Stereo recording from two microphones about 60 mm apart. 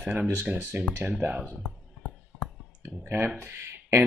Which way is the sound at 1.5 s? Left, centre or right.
Left.